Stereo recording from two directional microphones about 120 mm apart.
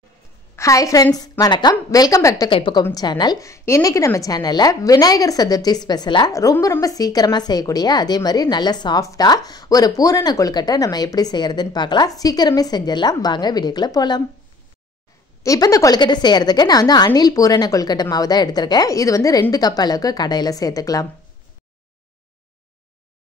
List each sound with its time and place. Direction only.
0.6 s a woman's voice: 25° left (ahead or behind)
2.5 s a woman's voice: 45° left (ahead or behind)
2.8 s a woman's voice: 30° left (ahead or behind)
15.4 s a woman's voice: 30° left (ahead or behind)